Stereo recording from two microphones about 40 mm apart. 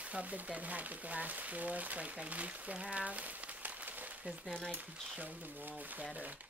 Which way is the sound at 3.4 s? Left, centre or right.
Right.